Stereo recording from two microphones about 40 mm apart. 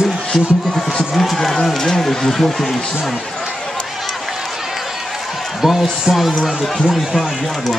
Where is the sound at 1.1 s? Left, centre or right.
Centre.